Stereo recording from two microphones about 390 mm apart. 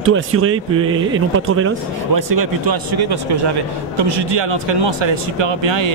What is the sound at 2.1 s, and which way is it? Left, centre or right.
Speech, right.